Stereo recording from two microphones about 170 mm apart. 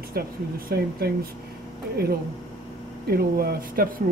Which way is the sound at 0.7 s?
65° right (ahead or behind).